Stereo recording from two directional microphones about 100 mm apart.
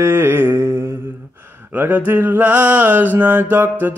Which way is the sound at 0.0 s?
20° right (ahead or behind).